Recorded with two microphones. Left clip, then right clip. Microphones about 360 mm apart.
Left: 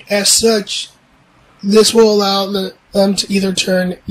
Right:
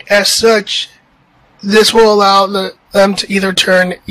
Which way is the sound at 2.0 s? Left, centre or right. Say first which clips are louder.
Right 5 dB; centre.